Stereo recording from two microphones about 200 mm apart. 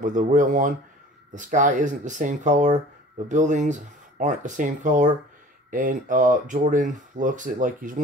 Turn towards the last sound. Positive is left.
turn(degrees=-40)  # may be behind; listen again after turning